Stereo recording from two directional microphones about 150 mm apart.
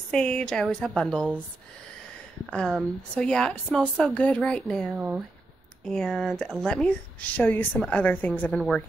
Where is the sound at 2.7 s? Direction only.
Centre (ahead or behind).